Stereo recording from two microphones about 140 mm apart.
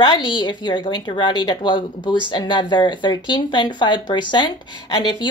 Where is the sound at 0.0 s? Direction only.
35° left (ahead or behind).